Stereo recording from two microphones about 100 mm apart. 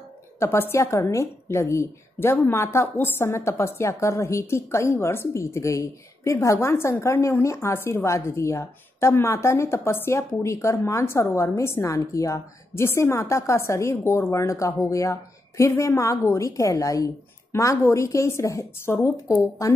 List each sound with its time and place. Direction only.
0.4 s a woman's voice: 25° left (ahead or behind)